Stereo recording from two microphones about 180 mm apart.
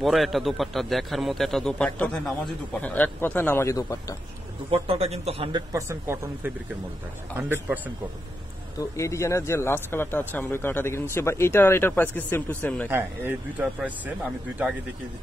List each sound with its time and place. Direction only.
0.0 s a man's voice: centre (ahead or behind); by 4.2 s 20° left (ahead or behind)
4.6 s a man's voice: 30° right (ahead or behind)
5.7 s a man's voice: 15° right (ahead or behind)
8.7 s speech: 15° left (ahead or behind)
12.9 s a man's voice: 10° right (ahead or behind)